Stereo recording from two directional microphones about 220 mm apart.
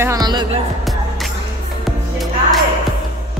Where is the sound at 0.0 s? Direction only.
15° right (ahead or behind).